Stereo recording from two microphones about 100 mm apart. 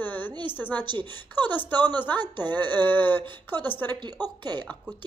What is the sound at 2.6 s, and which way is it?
Speech, 20° left (ahead or behind).